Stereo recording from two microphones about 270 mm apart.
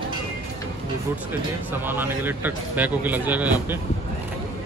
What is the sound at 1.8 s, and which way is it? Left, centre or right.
Speech, centre.